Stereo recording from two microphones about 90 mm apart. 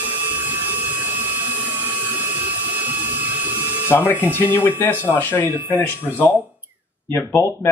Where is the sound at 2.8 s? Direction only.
20° right (ahead or behind).